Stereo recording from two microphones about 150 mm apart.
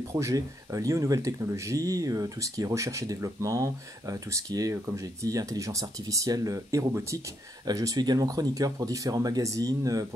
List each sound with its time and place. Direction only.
0.1 s speech: 20° right (ahead or behind)